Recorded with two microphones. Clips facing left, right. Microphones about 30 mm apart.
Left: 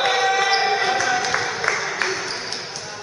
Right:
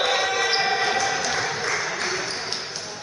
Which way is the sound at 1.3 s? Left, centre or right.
Centre.